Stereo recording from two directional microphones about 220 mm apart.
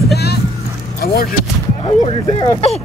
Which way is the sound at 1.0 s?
45° left (ahead or behind).